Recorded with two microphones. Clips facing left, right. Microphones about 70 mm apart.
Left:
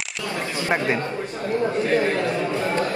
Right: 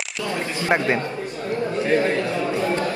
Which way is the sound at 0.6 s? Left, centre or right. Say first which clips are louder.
Right 2 dB; right.